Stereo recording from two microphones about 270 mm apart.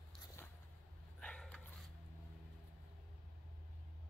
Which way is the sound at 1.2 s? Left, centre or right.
Centre.